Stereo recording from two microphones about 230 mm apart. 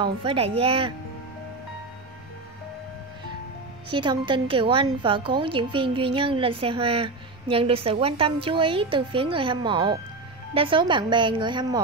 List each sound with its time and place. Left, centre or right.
0.0 s a woman's voice: right
3.9 s a woman's voice: centre